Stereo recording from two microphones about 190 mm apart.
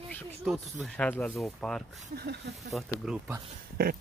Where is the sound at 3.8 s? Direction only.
55° right (ahead or behind).